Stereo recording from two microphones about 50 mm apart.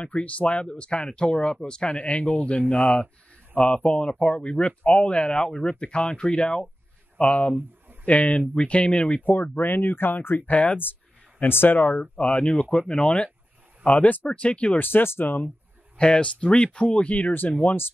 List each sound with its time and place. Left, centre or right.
0.0 s speech: left
9.2 s speech: left
11.4 s speech: left
11.9 s speech: left
13.8 s speech: left
14.3 s speech: left
14.8 s speech: left
16.0 s speech: centre